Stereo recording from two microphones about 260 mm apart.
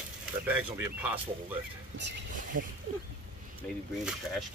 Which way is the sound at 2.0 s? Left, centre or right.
Right.